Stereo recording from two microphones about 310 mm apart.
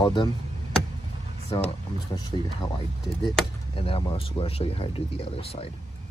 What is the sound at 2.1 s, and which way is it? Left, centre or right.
Speech, centre.